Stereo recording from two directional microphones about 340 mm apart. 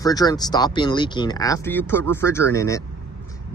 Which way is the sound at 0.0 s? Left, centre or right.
Centre.